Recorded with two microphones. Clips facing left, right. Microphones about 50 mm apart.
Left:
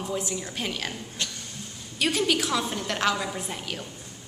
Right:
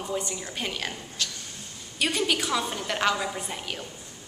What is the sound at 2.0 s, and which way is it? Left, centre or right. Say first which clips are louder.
A woman's voice: left 1 dB; centre.